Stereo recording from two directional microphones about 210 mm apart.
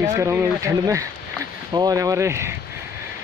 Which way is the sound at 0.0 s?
15° right (ahead or behind).